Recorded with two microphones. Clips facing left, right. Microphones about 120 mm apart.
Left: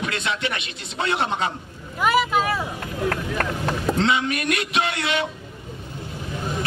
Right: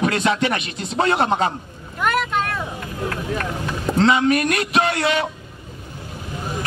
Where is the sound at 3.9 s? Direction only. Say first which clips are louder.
Right 9 dB; 40° right (ahead or behind).